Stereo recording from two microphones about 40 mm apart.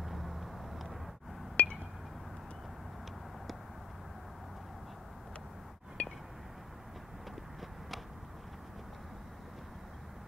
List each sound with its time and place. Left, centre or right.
0.0 s vehicle: centre
1.6 s chink: left
6.0 s a sound: left